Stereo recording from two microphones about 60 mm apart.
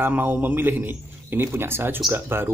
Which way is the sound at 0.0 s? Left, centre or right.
Right.